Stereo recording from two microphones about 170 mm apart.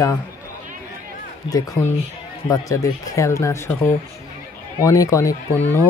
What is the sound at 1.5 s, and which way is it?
Speech, 30° left (ahead or behind).